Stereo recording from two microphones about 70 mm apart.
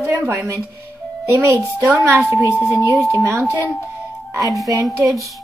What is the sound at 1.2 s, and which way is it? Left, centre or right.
Speech, right.